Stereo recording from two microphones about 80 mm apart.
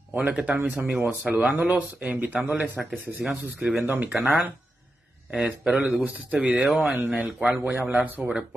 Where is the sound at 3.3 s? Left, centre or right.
Centre.